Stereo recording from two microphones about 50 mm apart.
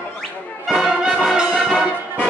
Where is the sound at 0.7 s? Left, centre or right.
Centre.